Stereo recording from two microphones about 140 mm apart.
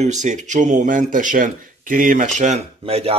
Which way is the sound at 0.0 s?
60° right (ahead or behind).